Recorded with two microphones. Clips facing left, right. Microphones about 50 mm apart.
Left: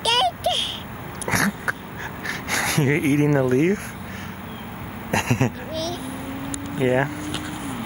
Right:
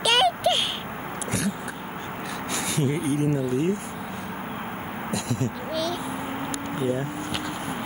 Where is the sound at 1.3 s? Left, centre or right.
Left.